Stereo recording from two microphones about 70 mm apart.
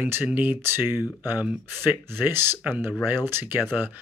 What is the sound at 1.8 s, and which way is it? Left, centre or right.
Speech, right.